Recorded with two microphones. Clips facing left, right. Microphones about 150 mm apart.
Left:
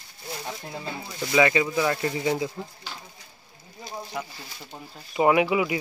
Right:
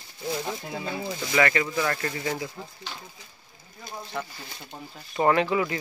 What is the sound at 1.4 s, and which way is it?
Speech, 15° left (ahead or behind).